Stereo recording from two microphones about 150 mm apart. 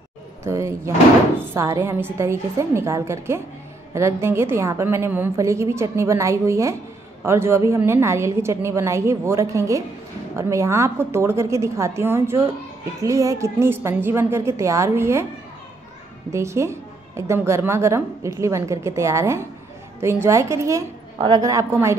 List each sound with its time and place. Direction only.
0.4 s a woman's voice: 20° right (ahead or behind)
16.3 s a woman's voice: 20° right (ahead or behind)